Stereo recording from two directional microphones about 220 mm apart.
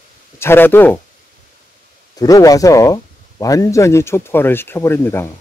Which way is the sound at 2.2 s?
15° left (ahead or behind).